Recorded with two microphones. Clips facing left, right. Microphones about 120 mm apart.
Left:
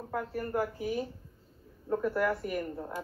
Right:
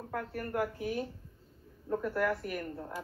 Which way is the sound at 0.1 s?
15° left (ahead or behind).